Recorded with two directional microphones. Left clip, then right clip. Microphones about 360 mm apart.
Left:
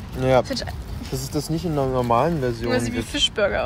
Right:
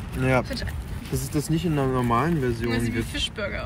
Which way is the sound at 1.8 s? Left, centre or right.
Centre.